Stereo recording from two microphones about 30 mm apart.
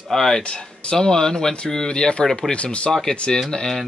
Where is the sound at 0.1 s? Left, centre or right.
Centre.